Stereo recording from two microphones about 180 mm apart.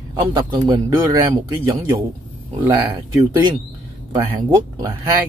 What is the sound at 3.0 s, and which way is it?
Speech, 20° right (ahead or behind).